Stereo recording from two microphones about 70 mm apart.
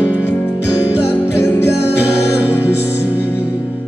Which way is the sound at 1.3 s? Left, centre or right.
Left.